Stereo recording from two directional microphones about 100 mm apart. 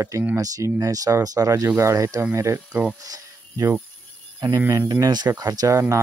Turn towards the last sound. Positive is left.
turn(degrees=-35)  # may be behind; listen again after turning